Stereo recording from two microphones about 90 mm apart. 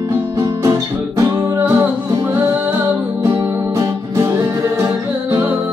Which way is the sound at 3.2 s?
35° right (ahead or behind).